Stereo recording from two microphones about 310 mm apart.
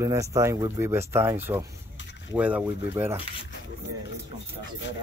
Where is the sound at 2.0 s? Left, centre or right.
Left.